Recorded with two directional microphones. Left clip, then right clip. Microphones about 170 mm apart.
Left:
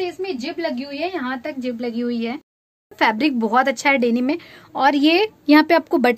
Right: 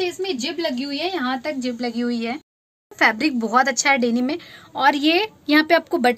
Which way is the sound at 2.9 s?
60° left (ahead or behind).